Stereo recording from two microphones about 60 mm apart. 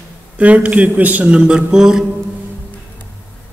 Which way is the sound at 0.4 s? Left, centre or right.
Right.